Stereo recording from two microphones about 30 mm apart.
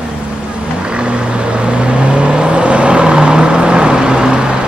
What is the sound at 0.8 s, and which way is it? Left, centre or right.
Vehicle, right.